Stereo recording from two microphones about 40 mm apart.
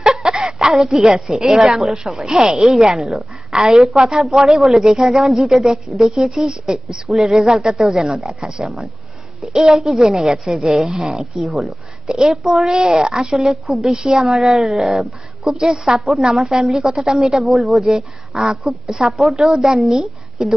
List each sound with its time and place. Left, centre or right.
0.0 s a woman's voice: centre
7.1 s a woman's voice: centre
13.4 s a woman's voice: centre
15.5 s a woman's voice: centre
17.9 s a woman's voice: centre
19.7 s a woman's voice: centre